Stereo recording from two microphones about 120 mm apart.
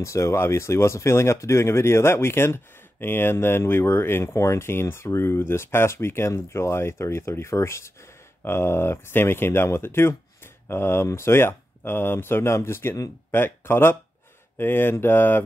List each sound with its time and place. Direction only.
0.0 s speech: 25° left (ahead or behind)